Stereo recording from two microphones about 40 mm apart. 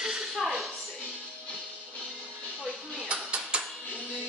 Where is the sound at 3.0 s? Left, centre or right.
Right.